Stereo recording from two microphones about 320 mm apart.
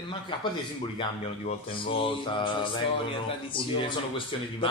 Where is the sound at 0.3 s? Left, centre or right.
Centre.